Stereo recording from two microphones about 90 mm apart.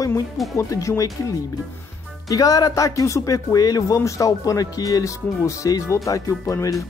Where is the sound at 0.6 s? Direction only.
35° left (ahead or behind).